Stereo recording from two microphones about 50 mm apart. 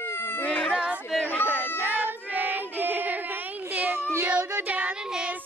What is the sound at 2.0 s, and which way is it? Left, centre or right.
Child singing, right.